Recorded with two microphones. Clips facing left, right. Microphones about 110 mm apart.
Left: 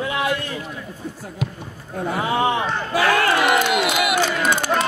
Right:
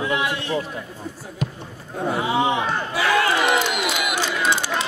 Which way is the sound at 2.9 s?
55° left (ahead or behind).